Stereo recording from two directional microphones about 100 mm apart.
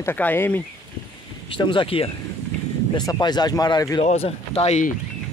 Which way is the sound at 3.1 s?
45° left (ahead or behind).